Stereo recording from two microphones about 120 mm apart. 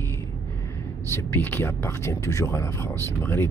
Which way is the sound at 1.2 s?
20° left (ahead or behind).